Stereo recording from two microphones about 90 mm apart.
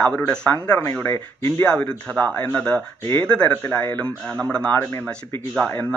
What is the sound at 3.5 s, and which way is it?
Speech, 20° left (ahead or behind).